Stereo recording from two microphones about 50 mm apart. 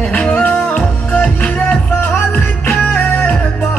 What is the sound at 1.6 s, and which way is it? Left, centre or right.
Music, left.